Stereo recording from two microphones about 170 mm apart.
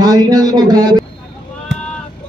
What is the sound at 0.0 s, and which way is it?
A man's voice, 20° right (ahead or behind).